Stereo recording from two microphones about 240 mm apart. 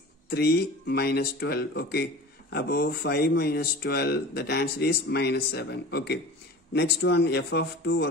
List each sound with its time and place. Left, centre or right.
0.3 s a man's voice: left